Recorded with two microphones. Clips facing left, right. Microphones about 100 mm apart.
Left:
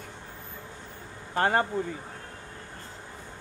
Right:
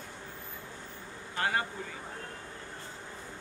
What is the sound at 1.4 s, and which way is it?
Speech, 40° left (ahead or behind).